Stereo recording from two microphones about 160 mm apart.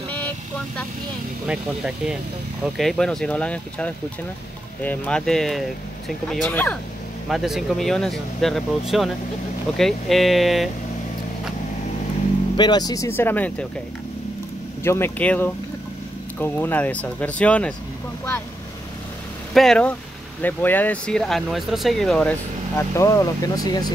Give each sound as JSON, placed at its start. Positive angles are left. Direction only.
{"t": 1.5, "sound": "speech", "side_deg": -5}
{"t": 6.5, "sound": "speech", "side_deg": 10}
{"t": 7.2, "sound": "speech", "side_deg": 0}
{"t": 12.5, "sound": "speech", "side_deg": 25}
{"t": 14.8, "sound": "speech", "side_deg": 15}
{"t": 19.5, "sound": "speech", "side_deg": 5}